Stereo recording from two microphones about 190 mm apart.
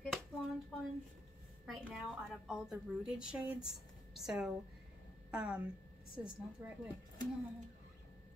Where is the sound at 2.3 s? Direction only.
Centre (ahead or behind).